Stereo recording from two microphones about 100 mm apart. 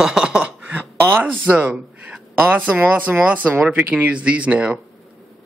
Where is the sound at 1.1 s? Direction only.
15° right (ahead or behind).